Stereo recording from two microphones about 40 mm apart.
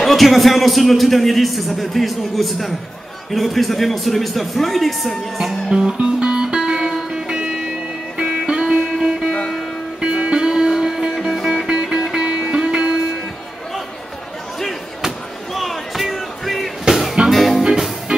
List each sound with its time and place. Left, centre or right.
0.0 s a man's voice: centre
5.7 s music: centre
15.5 s music: centre